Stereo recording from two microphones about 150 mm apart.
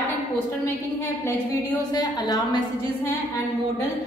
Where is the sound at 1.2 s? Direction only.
20° left (ahead or behind).